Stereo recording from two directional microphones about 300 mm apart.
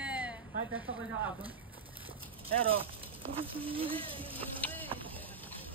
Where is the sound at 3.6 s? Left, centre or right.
Centre.